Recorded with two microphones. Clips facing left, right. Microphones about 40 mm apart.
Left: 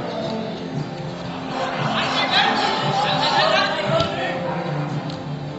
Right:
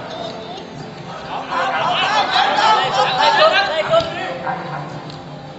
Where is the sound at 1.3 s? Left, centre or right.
Right.